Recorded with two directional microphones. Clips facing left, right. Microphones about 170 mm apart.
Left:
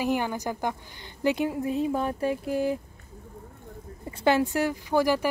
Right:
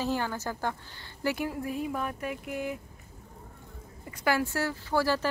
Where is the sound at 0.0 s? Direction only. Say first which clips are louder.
Left 4 dB; 15° left (ahead or behind); by 2.8 s 30° left (ahead or behind).